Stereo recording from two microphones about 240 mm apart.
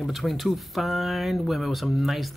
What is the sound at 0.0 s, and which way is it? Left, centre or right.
Speech, centre.